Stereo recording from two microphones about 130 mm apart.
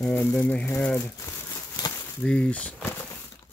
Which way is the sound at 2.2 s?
5° left (ahead or behind).